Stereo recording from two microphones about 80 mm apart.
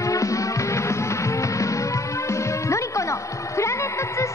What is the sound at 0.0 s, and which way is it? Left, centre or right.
Music, left.